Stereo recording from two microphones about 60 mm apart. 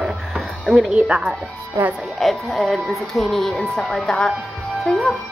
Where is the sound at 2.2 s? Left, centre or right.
Centre.